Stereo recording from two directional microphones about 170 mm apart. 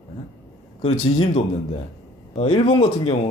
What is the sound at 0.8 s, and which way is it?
A man's voice, 35° left (ahead or behind).